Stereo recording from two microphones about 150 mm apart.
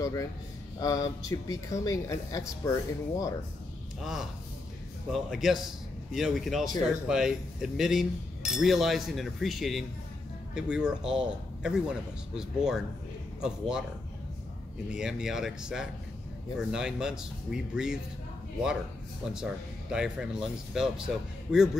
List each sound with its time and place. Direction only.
0.0 s a man's voice: 20° left (ahead or behind)
4.0 s speech: centre (ahead or behind)
14.9 s speech: 5° right (ahead or behind)
19.2 s speech: 5° right (ahead or behind)